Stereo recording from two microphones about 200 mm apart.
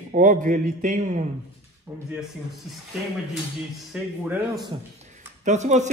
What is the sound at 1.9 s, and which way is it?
Speech, 10° right (ahead or behind).